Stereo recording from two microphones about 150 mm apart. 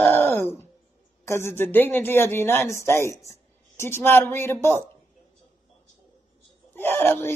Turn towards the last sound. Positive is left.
turn(degrees=15)  # may be behind; listen again after turning